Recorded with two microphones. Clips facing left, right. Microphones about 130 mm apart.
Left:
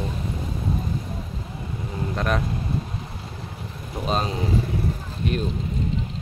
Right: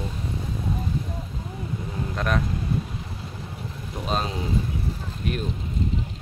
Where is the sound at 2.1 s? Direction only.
Centre (ahead or behind).